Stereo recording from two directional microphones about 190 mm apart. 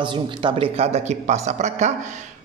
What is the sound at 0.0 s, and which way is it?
A man's voice, 25° right (ahead or behind).